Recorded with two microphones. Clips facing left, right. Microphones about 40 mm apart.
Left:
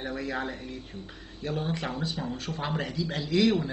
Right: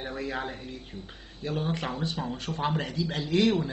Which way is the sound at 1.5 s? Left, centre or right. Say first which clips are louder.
Right 1 dB; right.